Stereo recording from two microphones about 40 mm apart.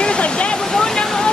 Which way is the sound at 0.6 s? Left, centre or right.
Centre.